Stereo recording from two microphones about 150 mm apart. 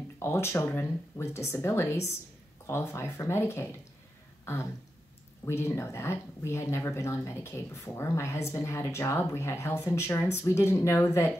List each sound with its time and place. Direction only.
0.2 s speech: 15° left (ahead or behind)
5.4 s speech: 15° left (ahead or behind)